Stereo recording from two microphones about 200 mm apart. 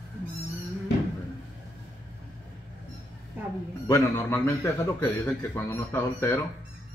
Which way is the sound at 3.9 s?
10° left (ahead or behind).